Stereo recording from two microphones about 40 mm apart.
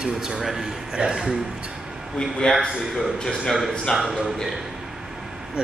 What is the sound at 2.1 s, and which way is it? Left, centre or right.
Speech, centre.